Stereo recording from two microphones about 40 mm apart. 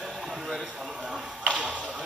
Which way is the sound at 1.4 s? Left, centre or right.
Right.